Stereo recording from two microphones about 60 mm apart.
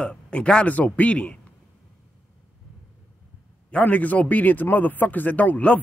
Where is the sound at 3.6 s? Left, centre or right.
Left.